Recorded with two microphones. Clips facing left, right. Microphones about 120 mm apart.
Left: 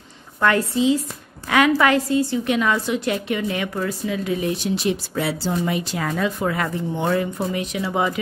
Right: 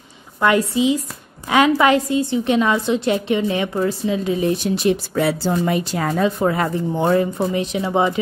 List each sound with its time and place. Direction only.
0.4 s a woman's voice: 15° right (ahead or behind)
4.8 s a woman's voice: 50° right (ahead or behind); by 8.1 s 25° right (ahead or behind)